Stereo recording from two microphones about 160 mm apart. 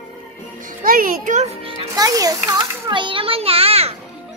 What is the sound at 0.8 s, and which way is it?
Speech, 60° right (ahead or behind).